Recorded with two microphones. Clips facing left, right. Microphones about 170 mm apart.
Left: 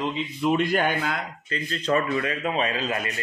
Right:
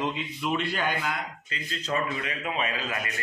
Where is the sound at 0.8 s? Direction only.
60° left (ahead or behind).